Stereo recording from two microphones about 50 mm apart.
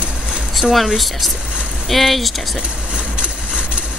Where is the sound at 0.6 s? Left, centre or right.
Centre.